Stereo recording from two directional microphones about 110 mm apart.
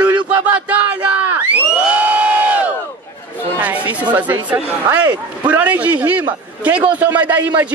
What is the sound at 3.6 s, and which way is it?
Speech, 15° right (ahead or behind).